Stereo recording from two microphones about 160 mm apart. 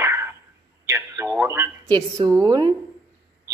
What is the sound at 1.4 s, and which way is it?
Speech, 15° right (ahead or behind).